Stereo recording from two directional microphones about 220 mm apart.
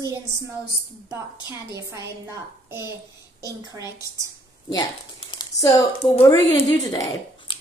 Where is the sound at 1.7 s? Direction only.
15° right (ahead or behind).